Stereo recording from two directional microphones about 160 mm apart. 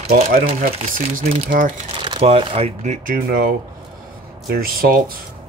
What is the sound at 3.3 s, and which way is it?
Speech, 70° right (ahead or behind).